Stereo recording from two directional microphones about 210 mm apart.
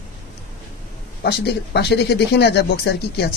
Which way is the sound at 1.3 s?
50° left (ahead or behind).